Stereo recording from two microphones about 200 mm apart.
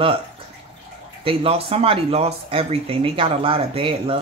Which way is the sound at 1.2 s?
30° right (ahead or behind).